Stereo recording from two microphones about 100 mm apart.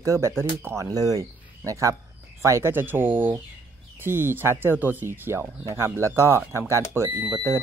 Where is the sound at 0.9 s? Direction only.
40° right (ahead or behind).